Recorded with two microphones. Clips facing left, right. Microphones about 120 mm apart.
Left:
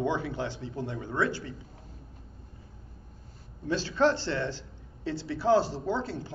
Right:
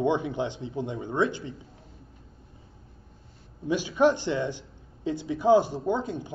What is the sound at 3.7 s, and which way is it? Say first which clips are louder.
Speech: right 3 dB; 15° right (ahead or behind).